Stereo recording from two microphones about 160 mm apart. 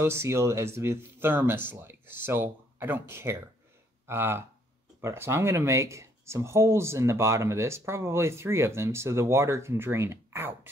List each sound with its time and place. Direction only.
0.0 s speech: 15° right (ahead or behind)